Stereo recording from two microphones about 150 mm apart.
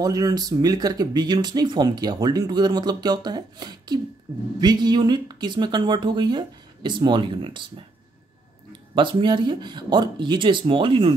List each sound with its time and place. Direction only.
0.0 s speech: 25° right (ahead or behind)
8.9 s speech: 30° right (ahead or behind)